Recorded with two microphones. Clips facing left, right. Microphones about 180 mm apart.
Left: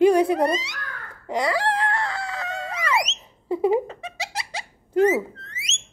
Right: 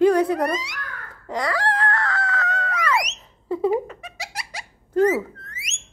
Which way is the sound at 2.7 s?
25° left (ahead or behind).